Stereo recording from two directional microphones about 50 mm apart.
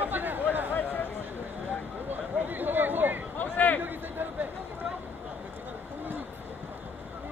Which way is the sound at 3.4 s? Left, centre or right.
Left.